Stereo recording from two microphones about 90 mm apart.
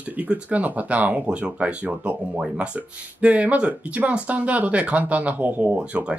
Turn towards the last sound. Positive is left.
turn(degrees=-15)  # may be behind; listen again after turning